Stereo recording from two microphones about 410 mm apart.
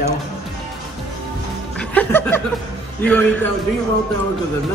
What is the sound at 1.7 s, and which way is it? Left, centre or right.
Music, centre.